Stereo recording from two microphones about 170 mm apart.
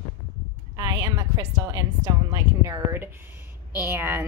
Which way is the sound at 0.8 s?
20° right (ahead or behind).